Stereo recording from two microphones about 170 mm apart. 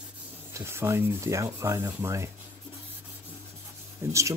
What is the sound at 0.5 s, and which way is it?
Speech, 15° right (ahead or behind).